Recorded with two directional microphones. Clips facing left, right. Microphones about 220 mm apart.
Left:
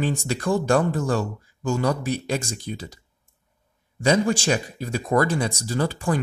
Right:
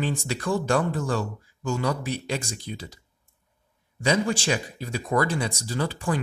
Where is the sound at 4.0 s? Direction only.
45° left (ahead or behind).